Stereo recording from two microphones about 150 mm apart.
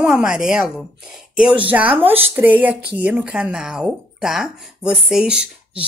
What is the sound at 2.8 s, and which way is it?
Speech, 90° right.